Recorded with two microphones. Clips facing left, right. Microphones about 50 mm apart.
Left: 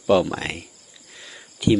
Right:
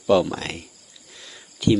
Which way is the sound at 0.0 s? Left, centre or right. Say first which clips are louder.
Even; centre.